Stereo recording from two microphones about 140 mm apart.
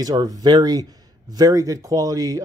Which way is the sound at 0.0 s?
30° right (ahead or behind).